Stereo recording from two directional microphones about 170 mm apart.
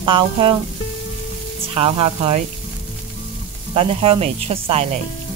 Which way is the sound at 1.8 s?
35° right (ahead or behind).